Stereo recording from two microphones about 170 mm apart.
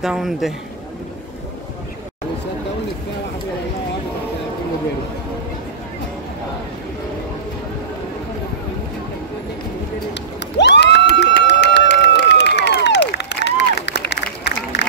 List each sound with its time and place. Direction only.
0.0 s a man's voice: centre (ahead or behind)
10.6 s crowd: 90° left